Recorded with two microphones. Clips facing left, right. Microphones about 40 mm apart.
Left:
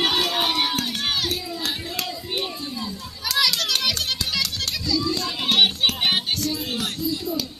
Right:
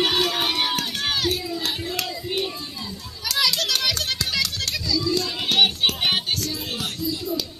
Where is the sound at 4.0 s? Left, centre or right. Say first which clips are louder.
Even; left.